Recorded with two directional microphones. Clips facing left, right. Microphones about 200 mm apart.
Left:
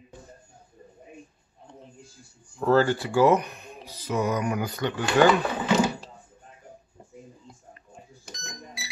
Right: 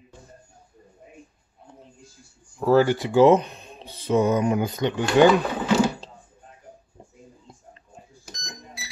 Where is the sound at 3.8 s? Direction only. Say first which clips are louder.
Right 6 dB; 30° right (ahead or behind).